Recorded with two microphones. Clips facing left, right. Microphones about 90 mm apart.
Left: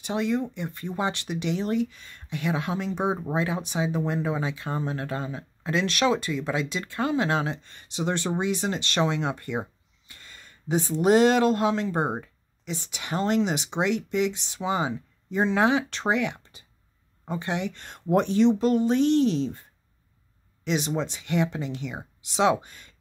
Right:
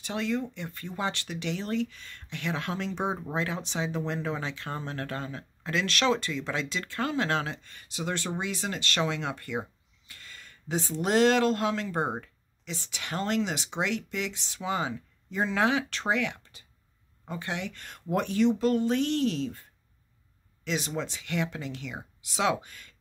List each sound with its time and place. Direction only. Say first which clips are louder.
0.0 s speech: left 4 dB; 20° left (ahead or behind)
20.6 s speech: left 5 dB; 20° left (ahead or behind)